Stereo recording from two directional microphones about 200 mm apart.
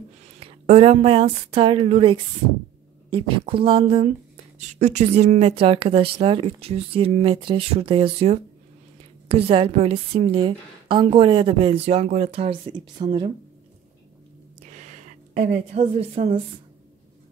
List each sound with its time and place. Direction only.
0.4 s a woman's voice: 30° right (ahead or behind)
4.6 s a woman's voice: 35° right (ahead or behind)
14.7 s a woman's voice: 35° right (ahead or behind)